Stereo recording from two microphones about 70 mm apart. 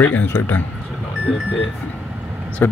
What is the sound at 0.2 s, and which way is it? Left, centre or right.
Speech, left.